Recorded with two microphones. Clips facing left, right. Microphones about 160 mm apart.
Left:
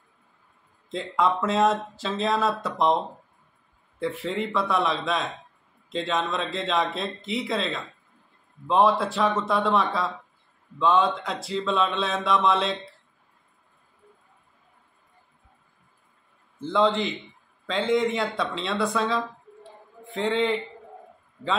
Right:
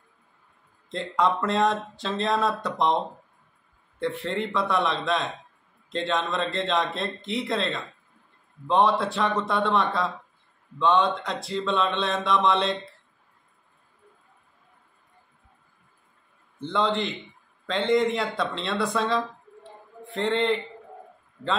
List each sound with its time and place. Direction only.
0.8 s speech: centre (ahead or behind)
4.0 s speech: centre (ahead or behind)
16.5 s speech: centre (ahead or behind)